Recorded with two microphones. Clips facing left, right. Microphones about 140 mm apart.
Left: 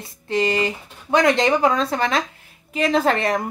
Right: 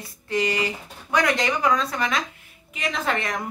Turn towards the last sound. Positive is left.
turn(degrees=35)  # may be behind; listen again after turning